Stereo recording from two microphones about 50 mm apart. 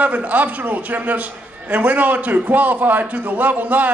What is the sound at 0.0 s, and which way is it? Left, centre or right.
A man's voice, right.